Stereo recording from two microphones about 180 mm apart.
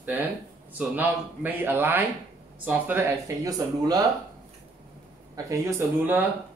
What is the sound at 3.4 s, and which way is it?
Speech, 20° right (ahead or behind).